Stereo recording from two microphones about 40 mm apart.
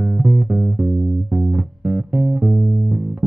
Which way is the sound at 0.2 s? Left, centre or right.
Right.